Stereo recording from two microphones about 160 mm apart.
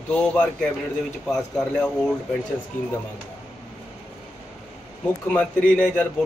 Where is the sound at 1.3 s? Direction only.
5° left (ahead or behind).